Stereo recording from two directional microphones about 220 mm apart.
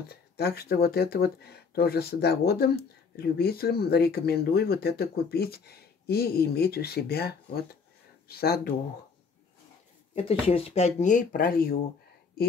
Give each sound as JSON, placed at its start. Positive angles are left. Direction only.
{"t": 0.1, "sound": "speech", "side_deg": 45}
{"t": 10.1, "sound": "speech", "side_deg": 25}